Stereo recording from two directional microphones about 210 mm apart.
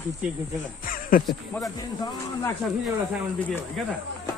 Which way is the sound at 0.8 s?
40° left (ahead or behind).